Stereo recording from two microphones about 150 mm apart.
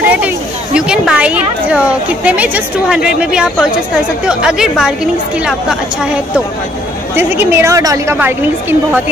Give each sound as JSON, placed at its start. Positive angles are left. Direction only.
{"t": 0.0, "sound": "a sound", "side_deg": -10}
{"t": 0.7, "sound": "a woman's voice", "side_deg": -5}
{"t": 7.2, "sound": "a woman's voice", "side_deg": -15}